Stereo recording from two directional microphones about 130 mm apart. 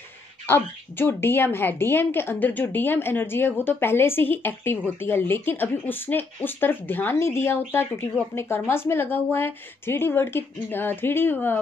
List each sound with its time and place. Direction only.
0.5 s a woman's voice: 15° left (ahead or behind)